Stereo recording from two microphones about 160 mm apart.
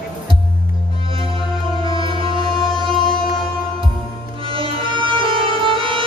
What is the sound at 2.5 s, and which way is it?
Music, 25° left (ahead or behind).